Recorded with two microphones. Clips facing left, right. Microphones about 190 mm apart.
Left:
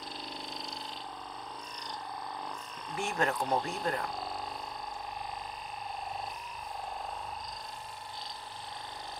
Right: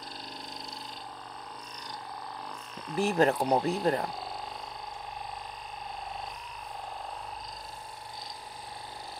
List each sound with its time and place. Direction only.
3.0 s speech: 35° right (ahead or behind)